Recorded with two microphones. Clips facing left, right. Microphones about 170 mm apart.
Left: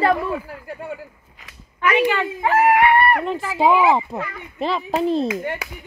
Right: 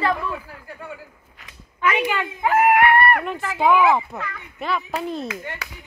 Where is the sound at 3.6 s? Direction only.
30° left (ahead or behind).